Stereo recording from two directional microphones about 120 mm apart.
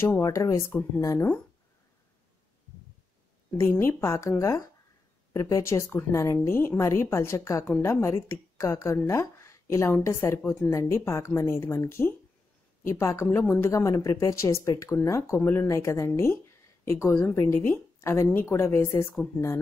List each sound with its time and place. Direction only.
0.0 s a woman's voice: 25° left (ahead or behind)
3.5 s a woman's voice: 20° left (ahead or behind)